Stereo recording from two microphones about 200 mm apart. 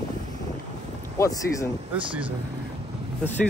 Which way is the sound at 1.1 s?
15° left (ahead or behind).